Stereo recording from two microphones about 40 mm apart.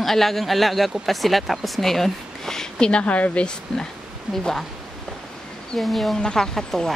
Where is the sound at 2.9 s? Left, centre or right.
Left.